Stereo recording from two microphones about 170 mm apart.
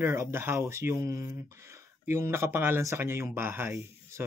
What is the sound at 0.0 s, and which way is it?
Speech, 15° right (ahead or behind).